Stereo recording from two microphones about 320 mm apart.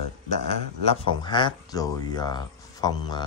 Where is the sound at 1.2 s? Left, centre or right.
Centre.